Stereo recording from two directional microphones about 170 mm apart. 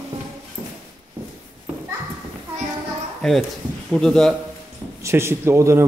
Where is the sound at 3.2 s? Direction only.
Centre (ahead or behind).